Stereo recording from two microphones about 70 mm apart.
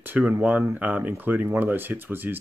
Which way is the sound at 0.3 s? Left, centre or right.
Centre.